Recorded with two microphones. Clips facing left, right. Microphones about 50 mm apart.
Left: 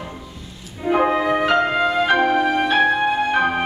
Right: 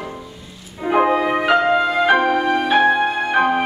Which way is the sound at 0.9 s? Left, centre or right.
Centre.